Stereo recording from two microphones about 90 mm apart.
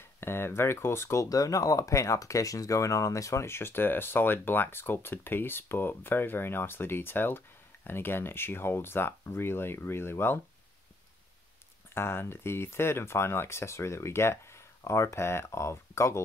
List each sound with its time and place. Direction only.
0.2 s speech: 25° left (ahead or behind)
11.9 s speech: 25° left (ahead or behind)